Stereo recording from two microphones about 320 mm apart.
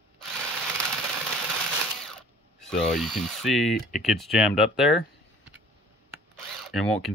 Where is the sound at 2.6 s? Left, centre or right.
Centre.